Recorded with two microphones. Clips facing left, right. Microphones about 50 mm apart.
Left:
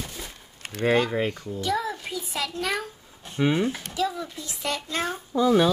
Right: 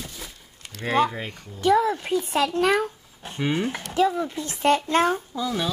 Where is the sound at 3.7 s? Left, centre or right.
Right.